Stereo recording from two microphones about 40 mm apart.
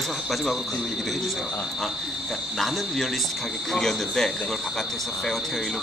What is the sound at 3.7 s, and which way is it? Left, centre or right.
Speech, centre.